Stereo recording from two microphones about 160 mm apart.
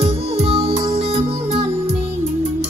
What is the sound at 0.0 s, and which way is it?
Music, 40° right (ahead or behind).